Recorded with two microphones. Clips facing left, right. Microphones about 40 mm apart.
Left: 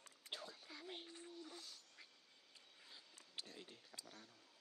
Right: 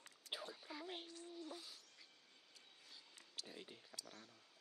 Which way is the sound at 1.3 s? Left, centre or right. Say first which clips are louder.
Right 3 dB; centre.